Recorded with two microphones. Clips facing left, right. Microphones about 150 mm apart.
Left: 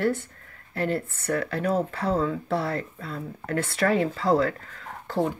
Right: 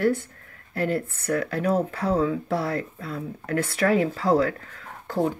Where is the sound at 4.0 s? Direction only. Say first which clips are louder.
Right 1 dB; 50° right (ahead or behind).